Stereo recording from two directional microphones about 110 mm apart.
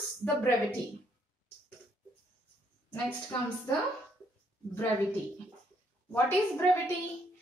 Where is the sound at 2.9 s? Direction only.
15° left (ahead or behind).